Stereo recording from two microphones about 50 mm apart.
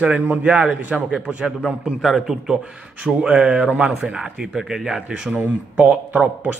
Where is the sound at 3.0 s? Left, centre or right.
Centre.